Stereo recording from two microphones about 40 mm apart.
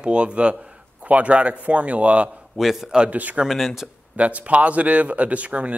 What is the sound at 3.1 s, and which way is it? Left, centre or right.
Speech, right.